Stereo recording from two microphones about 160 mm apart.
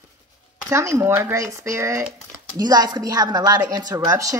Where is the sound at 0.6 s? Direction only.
15° right (ahead or behind).